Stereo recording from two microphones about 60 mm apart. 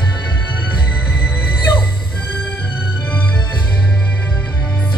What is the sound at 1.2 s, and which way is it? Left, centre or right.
Music, left.